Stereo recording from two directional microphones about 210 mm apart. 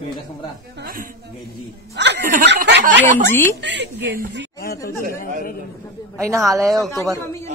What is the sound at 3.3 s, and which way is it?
Speech, 10° left (ahead or behind).